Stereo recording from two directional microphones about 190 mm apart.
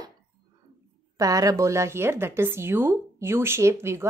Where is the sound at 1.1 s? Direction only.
20° right (ahead or behind).